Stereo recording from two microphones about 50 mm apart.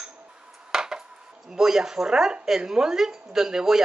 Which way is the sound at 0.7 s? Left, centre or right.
Centre.